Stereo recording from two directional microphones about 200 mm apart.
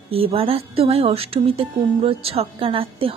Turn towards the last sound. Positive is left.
turn(degrees=-25)  # may be behind; listen again after turning